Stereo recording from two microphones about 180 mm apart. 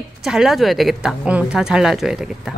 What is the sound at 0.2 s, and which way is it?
Speech, centre (ahead or behind).